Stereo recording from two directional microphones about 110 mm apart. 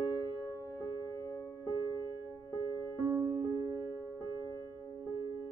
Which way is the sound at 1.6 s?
30° right (ahead or behind).